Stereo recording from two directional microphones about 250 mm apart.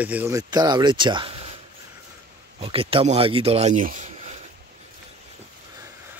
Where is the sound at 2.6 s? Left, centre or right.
Right.